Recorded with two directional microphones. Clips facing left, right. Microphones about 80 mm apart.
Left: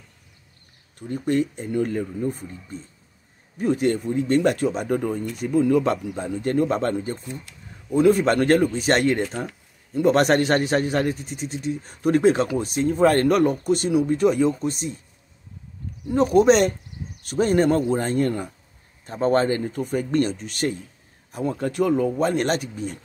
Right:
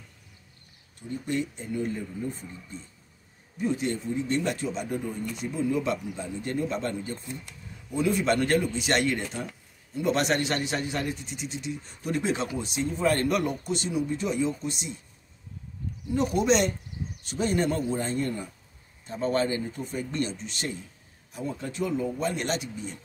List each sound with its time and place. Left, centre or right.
0.9 s speech: left
16.1 s speech: left
19.0 s speech: left